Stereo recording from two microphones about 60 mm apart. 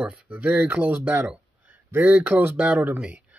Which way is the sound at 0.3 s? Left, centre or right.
Right.